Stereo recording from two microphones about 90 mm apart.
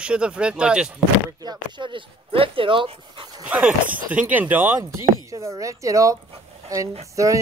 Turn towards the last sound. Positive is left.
turn(degrees=-35)  # may be behind; listen again after turning